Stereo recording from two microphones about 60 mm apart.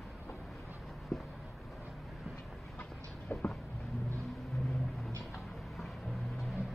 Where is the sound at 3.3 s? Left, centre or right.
Left.